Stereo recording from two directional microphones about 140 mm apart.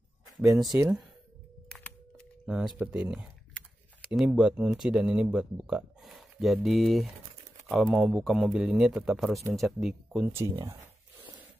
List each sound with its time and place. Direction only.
0.4 s speech: centre (ahead or behind)
1.7 s computer keyboard: 10° left (ahead or behind)
2.4 s speech: 5° right (ahead or behind)
10.3 s speech: 20° right (ahead or behind)